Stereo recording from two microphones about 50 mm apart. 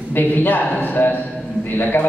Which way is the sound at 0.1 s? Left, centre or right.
Left.